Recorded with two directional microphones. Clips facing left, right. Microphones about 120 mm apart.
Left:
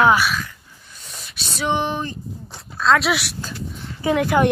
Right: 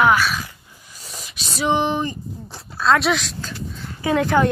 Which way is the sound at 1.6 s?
10° right (ahead or behind).